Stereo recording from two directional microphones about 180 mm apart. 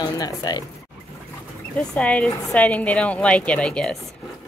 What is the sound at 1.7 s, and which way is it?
A woman's voice, 5° left (ahead or behind).